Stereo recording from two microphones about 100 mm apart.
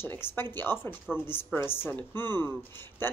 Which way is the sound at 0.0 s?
20° left (ahead or behind).